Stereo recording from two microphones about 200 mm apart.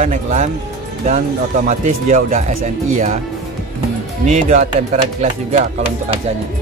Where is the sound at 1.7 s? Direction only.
35° right (ahead or behind).